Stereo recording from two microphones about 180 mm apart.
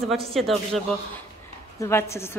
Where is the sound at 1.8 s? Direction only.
15° left (ahead or behind).